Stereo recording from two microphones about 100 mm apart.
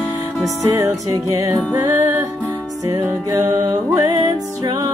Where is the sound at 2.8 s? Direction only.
35° right (ahead or behind).